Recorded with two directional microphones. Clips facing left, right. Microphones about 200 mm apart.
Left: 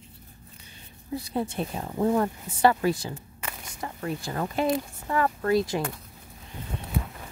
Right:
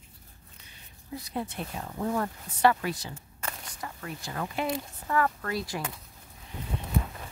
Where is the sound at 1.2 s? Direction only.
30° left (ahead or behind).